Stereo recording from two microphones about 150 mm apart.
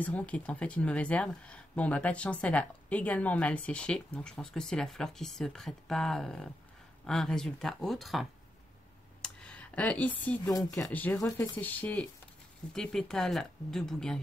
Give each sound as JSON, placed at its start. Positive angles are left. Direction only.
{"t": 0.0, "sound": "speech", "side_deg": 10}
{"t": 9.2, "sound": "a sound", "side_deg": 5}
{"t": 10.5, "sound": "speech", "side_deg": 25}
{"t": 10.9, "sound": "speech", "side_deg": 10}